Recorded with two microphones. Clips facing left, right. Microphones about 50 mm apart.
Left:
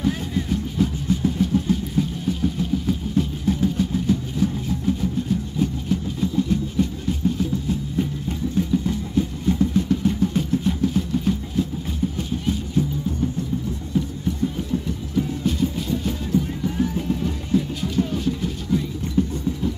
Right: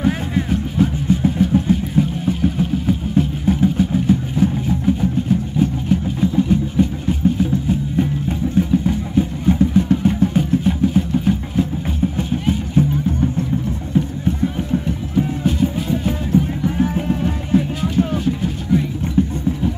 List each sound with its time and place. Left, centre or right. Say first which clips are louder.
0.0 s vehicle: right 5 dB; right
5.6 s a sound: right 5 dB; right
8.0 s music: right 5 dB; right